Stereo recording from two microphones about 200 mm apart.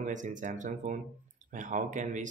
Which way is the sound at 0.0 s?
40° right (ahead or behind).